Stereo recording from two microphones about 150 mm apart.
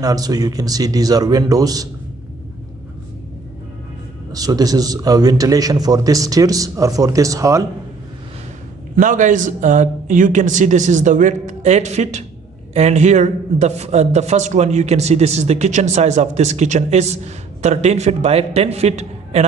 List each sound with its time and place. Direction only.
0.0 s a man's voice: 25° right (ahead or behind)
4.3 s a man's voice: 25° right (ahead or behind)
8.9 s a man's voice: 60° right (ahead or behind)